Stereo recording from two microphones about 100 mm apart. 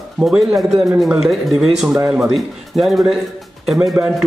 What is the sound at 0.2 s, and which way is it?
A man's voice, 10° right (ahead or behind).